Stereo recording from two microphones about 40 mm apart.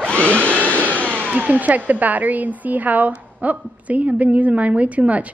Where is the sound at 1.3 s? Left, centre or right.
Right.